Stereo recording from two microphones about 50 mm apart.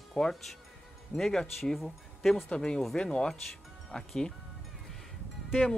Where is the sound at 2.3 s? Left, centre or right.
Centre.